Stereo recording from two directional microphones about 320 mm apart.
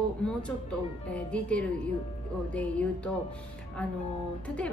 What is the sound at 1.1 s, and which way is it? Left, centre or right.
A woman's voice, centre.